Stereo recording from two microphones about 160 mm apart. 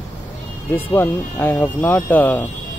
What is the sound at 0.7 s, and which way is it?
Speech, 15° left (ahead or behind).